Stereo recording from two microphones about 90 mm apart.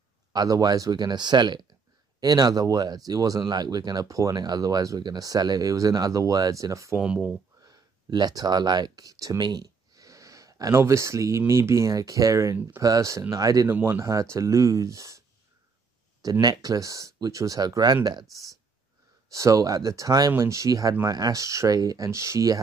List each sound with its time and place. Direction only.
0.3 s speech: 45° right (ahead or behind)
7.0 s speech: 10° right (ahead or behind)
7.6 s speech: 50° right (ahead or behind)
9.4 s a sound: 50° right (ahead or behind)
10.7 s speech: 30° right (ahead or behind)
13.7 s speech: 25° right (ahead or behind)
16.2 s speech: 45° right (ahead or behind)
19.3 s speech: 40° right (ahead or behind)